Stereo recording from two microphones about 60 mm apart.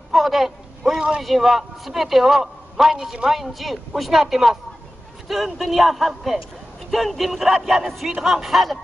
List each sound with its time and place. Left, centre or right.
0.1 s speech: centre
1.2 s a man's voice: centre